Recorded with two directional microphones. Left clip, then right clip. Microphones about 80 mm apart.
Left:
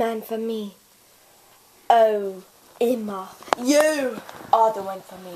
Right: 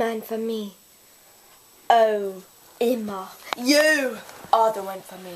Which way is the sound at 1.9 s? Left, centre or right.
Left.